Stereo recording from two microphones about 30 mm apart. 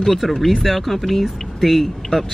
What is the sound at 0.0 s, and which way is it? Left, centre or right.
Speech, centre.